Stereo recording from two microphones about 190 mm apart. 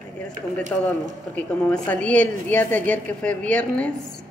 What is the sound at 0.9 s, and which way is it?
Speech, 10° left (ahead or behind).